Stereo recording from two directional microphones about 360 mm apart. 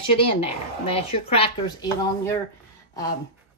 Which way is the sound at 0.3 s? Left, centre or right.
Centre.